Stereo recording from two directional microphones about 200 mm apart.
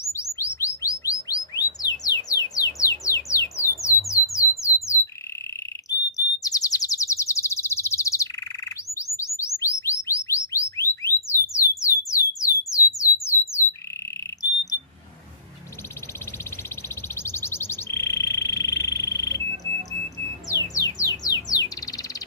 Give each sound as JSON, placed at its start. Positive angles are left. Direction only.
{"t": 0.0, "sound": "chirp", "side_deg": 15}
{"t": 2.0, "sound": "music", "side_deg": 15}
{"t": 5.9, "sound": "bird", "side_deg": 15}
{"t": 12.6, "sound": "a sound", "side_deg": 15}
{"t": 17.1, "sound": "bird", "side_deg": 10}